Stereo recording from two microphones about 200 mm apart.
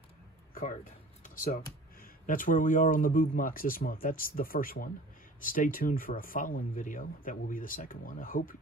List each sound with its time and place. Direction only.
1.2 s speech: 45° left (ahead or behind)